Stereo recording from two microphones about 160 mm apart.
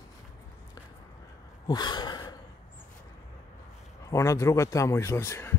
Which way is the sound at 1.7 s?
25° left (ahead or behind).